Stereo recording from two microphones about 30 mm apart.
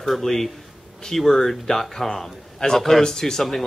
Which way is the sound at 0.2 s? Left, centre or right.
Centre.